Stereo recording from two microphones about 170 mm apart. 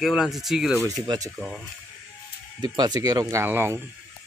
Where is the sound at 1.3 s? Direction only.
5° right (ahead or behind).